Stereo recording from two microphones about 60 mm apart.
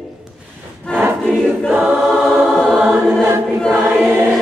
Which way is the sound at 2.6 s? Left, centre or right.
Centre.